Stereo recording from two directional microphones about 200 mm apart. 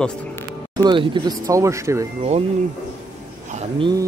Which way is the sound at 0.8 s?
25° right (ahead or behind).